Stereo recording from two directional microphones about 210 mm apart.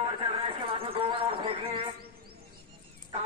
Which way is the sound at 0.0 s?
25° right (ahead or behind).